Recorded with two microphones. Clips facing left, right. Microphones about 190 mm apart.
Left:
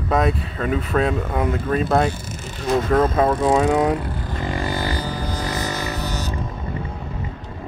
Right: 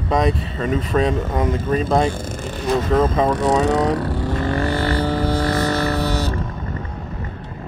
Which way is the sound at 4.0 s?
80° right.